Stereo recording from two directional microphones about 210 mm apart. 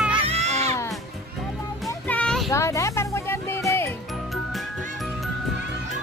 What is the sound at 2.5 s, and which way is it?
Music, 15° left (ahead or behind).